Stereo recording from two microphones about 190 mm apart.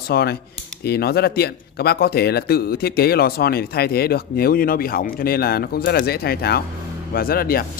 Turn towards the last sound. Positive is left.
turn(degrees=50)  # may be behind; listen again after turning